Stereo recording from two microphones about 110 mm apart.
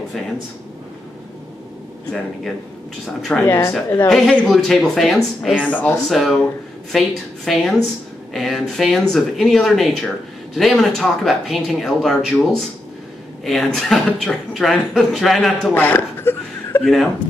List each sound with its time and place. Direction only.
3.2 s speech: 5° left (ahead or behind)
5.6 s speech: 15° left (ahead or behind)
6.0 s speech: centre (ahead or behind)
15.7 s chuckle: 20° left (ahead or behind)
16.8 s speech: centre (ahead or behind)